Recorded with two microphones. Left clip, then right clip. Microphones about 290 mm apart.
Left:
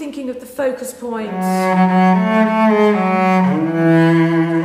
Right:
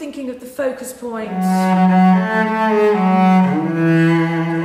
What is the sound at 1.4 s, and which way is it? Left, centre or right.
Cello, left.